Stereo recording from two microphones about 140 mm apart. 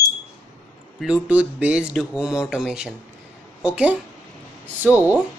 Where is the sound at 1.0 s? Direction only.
10° right (ahead or behind).